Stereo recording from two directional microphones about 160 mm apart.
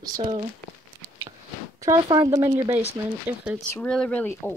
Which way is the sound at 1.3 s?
30° right (ahead or behind).